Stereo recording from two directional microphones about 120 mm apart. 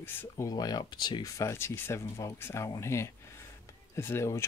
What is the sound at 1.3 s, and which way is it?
Speech, 25° left (ahead or behind).